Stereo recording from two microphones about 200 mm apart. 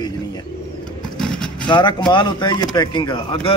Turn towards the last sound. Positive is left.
turn(degrees=25)  # may be behind; listen again after turning